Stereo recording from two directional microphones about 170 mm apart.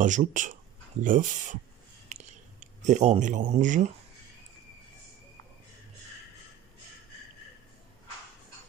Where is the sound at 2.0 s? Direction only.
45° right (ahead or behind).